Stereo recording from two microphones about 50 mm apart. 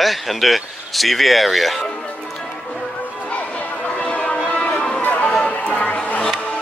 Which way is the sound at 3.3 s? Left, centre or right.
Left.